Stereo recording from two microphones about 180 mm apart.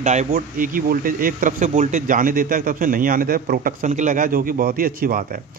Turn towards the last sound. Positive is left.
turn(degrees=-50)  # may be behind; listen again after turning